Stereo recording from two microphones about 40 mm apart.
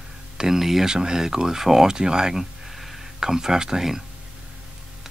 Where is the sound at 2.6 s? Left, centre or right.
Centre.